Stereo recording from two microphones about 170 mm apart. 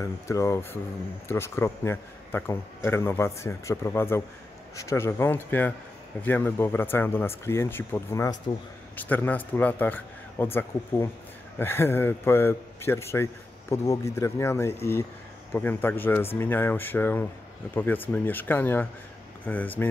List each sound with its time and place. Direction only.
0.0 s a man's voice: 15° left (ahead or behind)